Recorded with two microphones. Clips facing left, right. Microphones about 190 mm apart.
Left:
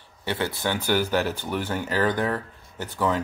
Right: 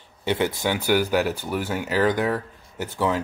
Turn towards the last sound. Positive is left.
turn(degrees=-10)  # may be behind; listen again after turning